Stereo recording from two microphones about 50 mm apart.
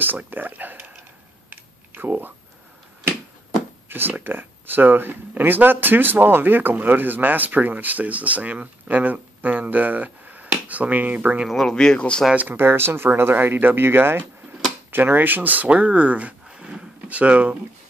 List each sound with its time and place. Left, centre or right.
0.3 s speech: right
1.5 s a sound: right
4.2 s speech: right
11.6 s speech: centre
12.4 s speech: right
16.4 s a sound: centre